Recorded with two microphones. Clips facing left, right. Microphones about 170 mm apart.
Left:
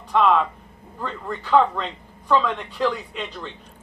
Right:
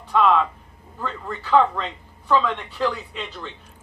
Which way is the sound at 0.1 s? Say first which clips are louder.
Even; centre (ahead or behind).